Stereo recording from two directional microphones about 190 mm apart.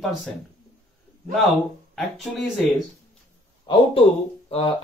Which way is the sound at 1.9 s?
Centre (ahead or behind).